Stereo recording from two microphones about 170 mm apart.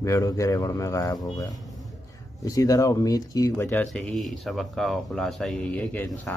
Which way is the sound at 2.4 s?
20° left (ahead or behind).